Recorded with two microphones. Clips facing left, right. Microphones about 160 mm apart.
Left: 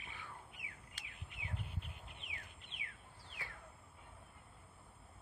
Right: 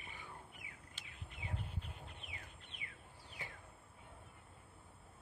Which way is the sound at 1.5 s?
10° left (ahead or behind).